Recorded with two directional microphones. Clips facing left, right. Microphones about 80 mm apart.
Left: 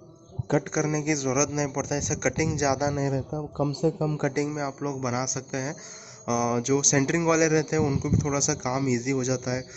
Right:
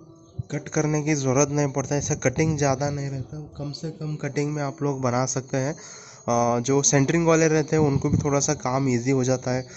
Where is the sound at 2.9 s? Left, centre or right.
Left.